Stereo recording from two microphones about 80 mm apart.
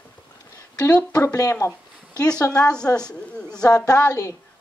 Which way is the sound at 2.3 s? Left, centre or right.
Centre.